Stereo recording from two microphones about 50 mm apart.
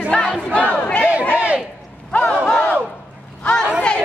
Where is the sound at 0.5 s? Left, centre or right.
Left.